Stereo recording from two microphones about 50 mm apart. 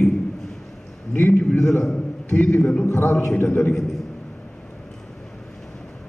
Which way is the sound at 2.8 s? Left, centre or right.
Left.